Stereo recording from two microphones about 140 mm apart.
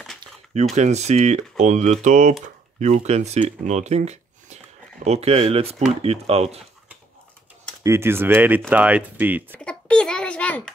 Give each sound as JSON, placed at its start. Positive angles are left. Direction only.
{"t": 0.7, "sound": "speech", "side_deg": -55}
{"t": 7.8, "sound": "speech", "side_deg": -20}
{"t": 9.6, "sound": "a child's voice", "side_deg": 5}